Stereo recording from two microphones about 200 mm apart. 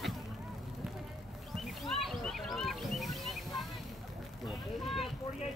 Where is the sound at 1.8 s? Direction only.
Centre (ahead or behind).